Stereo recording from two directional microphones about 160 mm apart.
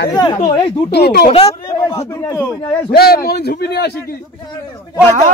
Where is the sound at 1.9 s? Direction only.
20° left (ahead or behind).